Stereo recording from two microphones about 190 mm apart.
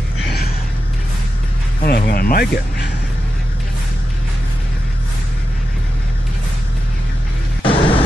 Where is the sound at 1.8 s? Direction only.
55° left (ahead or behind).